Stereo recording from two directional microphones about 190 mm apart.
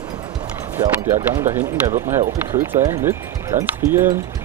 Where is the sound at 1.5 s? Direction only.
40° right (ahead or behind).